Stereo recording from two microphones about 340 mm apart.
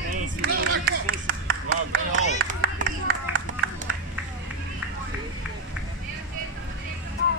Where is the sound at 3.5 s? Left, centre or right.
Right.